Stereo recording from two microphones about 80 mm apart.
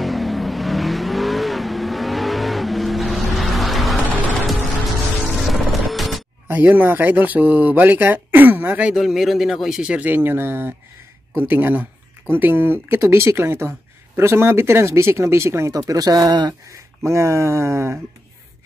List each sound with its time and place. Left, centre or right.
0.0 s vehicle: centre
5.2 s music: centre
6.4 s speech: right
9.0 s a man's voice: centre
10.1 s speech: right
15.7 s speech: right
16.6 s speech: right